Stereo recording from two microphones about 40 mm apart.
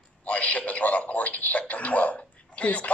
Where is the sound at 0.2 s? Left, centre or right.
Left.